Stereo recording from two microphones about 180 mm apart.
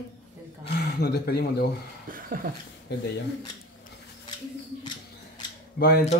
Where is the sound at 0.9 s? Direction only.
60° left (ahead or behind).